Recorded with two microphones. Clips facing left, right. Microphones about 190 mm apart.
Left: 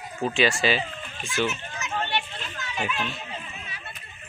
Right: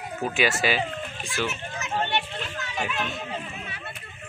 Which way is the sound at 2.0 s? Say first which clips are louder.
Right 2 dB; 50° right (ahead or behind).